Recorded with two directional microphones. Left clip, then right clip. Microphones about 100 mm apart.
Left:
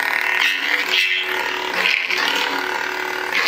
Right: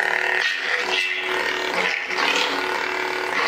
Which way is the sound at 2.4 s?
5° right (ahead or behind).